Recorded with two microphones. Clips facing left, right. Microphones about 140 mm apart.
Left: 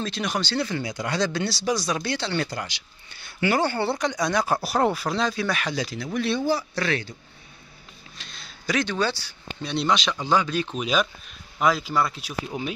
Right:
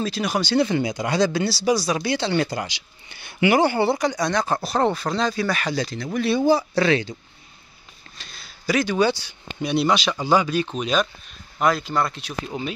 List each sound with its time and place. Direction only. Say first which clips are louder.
0.0 s speech: right 4 dB; 5° right (ahead or behind)
4.1 s speech: right 1 dB; 5° left (ahead or behind)
6.7 s speech: right 7 dB; 90° right
8.2 s speech: right 1 dB; 5° right (ahead or behind)